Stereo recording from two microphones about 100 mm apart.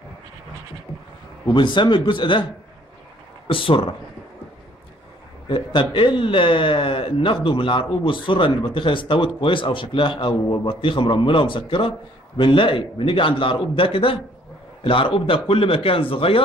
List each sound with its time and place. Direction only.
1.5 s speech: 50° left (ahead or behind)
3.4 s a man's voice: 60° left (ahead or behind)
5.5 s a man's voice: 60° left (ahead or behind)